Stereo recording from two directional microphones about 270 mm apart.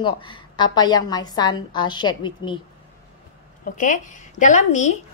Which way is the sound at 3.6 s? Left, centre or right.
Left.